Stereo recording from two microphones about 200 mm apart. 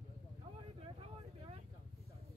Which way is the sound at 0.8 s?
30° right (ahead or behind).